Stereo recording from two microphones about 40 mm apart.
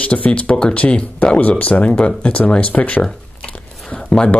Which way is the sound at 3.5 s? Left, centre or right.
Left.